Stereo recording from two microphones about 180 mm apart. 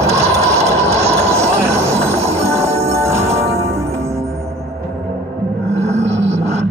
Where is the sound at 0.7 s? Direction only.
15° right (ahead or behind).